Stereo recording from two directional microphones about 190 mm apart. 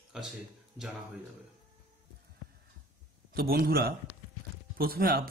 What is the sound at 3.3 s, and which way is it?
Speech, 55° right (ahead or behind).